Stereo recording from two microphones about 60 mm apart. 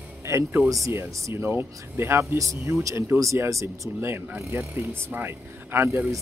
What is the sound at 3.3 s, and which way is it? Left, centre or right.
Speech, right.